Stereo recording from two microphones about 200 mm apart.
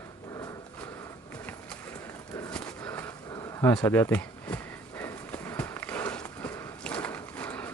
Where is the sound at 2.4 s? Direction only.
5° left (ahead or behind).